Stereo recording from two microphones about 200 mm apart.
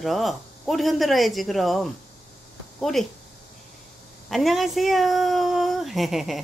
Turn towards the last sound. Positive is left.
turn(degrees=0)  # may be behind; listen again after turning